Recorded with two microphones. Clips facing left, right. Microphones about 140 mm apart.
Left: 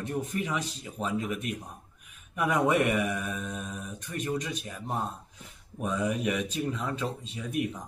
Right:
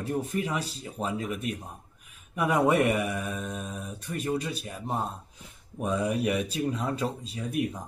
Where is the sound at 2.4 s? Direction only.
35° right (ahead or behind).